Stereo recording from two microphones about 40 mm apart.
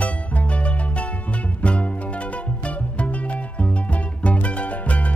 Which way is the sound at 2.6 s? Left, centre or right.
Left.